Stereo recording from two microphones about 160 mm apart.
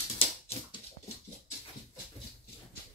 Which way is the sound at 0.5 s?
40° left (ahead or behind).